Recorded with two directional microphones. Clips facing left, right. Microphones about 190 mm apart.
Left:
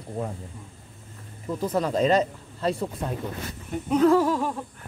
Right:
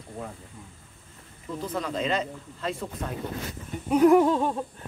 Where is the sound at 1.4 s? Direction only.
45° left (ahead or behind).